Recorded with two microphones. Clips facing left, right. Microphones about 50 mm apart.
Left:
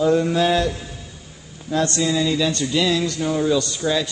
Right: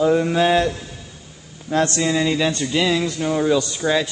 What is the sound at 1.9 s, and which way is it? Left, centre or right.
Speech, right.